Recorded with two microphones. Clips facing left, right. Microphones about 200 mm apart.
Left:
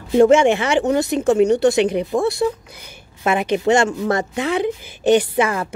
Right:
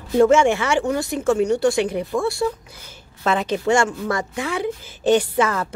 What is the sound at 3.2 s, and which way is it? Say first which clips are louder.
A woman's voice: left 3 dB; 15° left (ahead or behind).